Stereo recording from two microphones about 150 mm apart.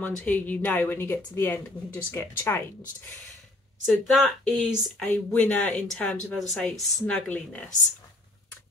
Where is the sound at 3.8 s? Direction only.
Centre (ahead or behind).